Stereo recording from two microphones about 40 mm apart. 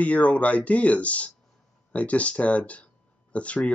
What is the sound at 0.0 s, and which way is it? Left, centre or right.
Speech, left.